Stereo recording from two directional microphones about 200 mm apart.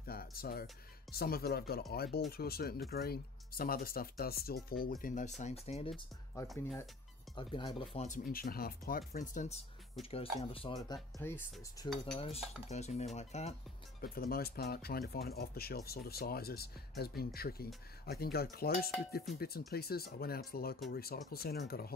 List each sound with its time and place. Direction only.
0.0 s music: 50° left (ahead or behind)
1.1 s speech: 50° left (ahead or behind); by 6.0 s 30° left (ahead or behind)
6.4 s speech: centre (ahead or behind)
7.3 s speech: 25° left (ahead or behind)
10.4 s speech: 25° left (ahead or behind); by 11.4 s 10° left (ahead or behind)
11.8 s cutlery: 20° left (ahead or behind)
12.2 s speech: 30° left (ahead or behind)
14.0 s speech: 45° left (ahead or behind)